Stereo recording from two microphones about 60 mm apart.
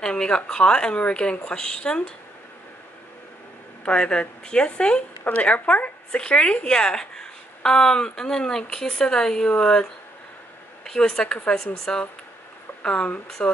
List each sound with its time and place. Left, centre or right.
0.0 s speech: centre
3.8 s speech: centre